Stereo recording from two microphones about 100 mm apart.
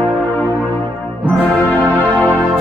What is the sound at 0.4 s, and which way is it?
Music, 20° left (ahead or behind).